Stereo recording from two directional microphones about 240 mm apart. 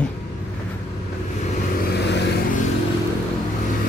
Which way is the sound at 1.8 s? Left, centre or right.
Left.